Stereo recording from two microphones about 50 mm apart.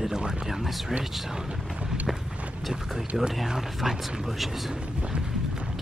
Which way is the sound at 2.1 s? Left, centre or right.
Centre.